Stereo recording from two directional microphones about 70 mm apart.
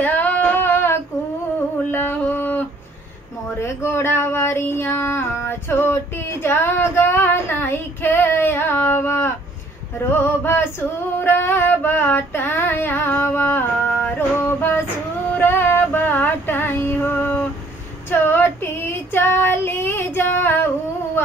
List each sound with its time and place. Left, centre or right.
0.0 s female singing: left
1.9 s music: left
3.6 s child singing: left
11.1 s female singing: left
14.1 s music: left
15.3 s female singing: left
18.1 s child singing: left